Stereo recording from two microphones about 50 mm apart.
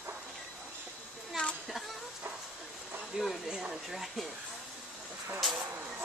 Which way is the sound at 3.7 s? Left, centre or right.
Centre.